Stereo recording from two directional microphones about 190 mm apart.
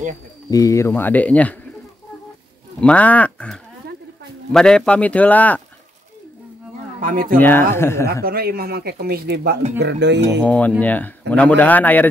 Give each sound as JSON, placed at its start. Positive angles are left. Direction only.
{"t": 0.5, "sound": "speech", "side_deg": 15}
{"t": 2.8, "sound": "speech", "side_deg": 5}
{"t": 7.0, "sound": "speech", "side_deg": -45}
{"t": 7.3, "sound": "speech", "side_deg": 10}
{"t": 8.1, "sound": "speech", "side_deg": -55}
{"t": 10.4, "sound": "speech", "side_deg": 5}